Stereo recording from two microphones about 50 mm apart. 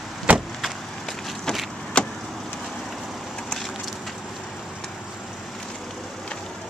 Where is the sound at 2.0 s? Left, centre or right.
Centre.